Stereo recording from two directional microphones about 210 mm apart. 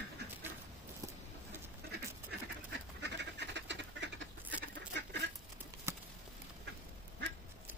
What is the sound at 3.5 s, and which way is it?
Duck, 55° right (ahead or behind).